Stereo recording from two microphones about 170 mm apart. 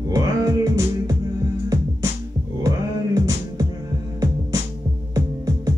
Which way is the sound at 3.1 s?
20° right (ahead or behind).